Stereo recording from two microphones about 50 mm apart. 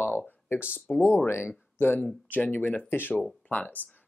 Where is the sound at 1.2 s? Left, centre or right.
Left.